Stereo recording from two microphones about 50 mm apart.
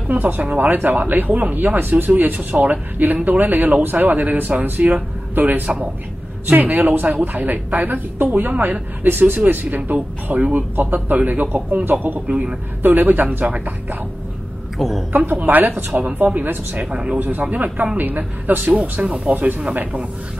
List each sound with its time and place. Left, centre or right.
0.1 s speech: right
12.3 s speech: right
12.8 s speech: right
14.8 s a woman's voice: centre
15.1 s speech: right
15.9 s speech: right
16.9 s speech: centre
17.4 s speech: right